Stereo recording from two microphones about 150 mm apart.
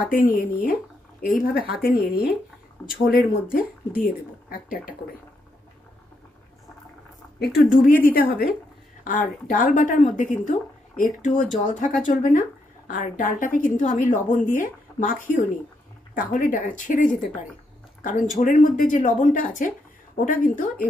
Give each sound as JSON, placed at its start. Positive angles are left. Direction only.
{"t": 0.0, "sound": "speech", "side_deg": 65}
{"t": 1.7, "sound": "speech", "side_deg": 85}
{"t": 7.5, "sound": "a woman's voice", "side_deg": 65}
{"t": 9.0, "sound": "a woman's voice", "side_deg": 65}